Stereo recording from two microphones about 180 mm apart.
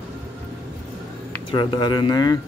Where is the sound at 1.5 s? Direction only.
25° left (ahead or behind).